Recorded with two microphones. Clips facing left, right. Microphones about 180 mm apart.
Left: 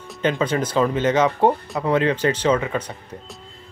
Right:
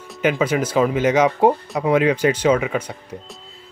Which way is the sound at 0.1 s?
10° right (ahead or behind).